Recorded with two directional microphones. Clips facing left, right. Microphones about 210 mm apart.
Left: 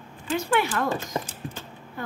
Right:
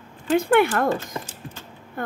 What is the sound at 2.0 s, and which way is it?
Speech, 55° right (ahead or behind).